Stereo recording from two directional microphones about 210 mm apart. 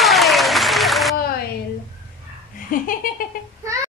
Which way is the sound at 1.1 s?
45° left (ahead or behind).